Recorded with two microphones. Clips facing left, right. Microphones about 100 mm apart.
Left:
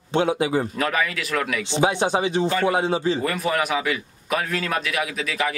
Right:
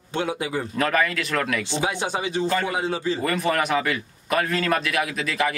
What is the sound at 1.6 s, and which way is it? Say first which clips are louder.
A man's voice: left 5 dB; 25° left (ahead or behind).